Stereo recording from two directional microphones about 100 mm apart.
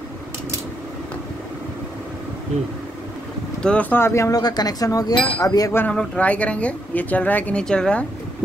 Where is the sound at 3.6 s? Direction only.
15° left (ahead or behind); by 5.8 s 35° left (ahead or behind).